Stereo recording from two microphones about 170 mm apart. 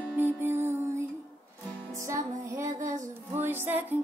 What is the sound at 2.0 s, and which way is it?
Music, 20° right (ahead or behind).